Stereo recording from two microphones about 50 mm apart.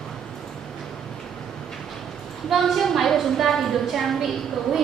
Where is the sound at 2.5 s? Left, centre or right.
Centre.